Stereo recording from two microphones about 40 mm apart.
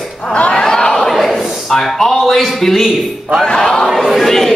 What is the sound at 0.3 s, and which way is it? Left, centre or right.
Speech, left.